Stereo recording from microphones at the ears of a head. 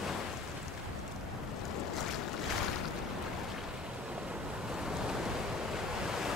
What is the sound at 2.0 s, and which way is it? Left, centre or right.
Boat, left.